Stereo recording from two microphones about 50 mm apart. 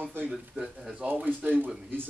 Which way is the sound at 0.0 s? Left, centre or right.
Right.